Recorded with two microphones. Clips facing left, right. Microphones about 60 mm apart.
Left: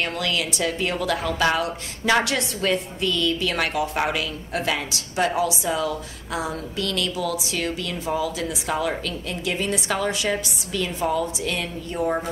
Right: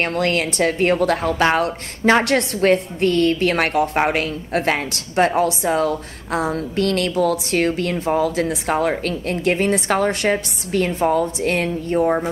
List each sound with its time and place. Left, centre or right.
0.0 s a woman's voice: right